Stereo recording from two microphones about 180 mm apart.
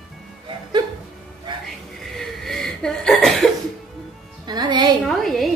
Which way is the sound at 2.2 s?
Centre (ahead or behind).